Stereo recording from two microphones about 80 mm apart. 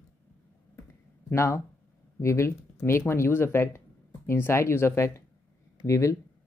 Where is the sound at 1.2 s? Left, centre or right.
Left.